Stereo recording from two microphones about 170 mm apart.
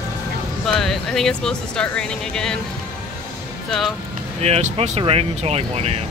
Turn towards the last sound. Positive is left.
turn(degrees=-40)  # may be behind; listen again after turning